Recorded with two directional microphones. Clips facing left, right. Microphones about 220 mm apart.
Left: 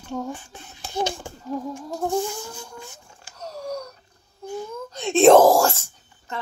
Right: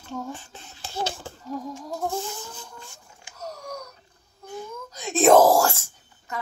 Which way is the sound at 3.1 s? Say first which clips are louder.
Left 1 dB; 10° right (ahead or behind).